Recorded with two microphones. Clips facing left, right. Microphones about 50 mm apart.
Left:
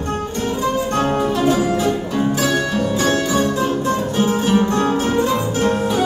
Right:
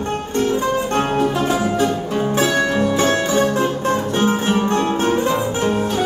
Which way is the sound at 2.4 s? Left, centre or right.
Right.